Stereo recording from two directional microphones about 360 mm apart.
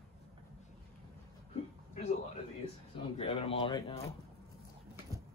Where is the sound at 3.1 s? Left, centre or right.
Centre.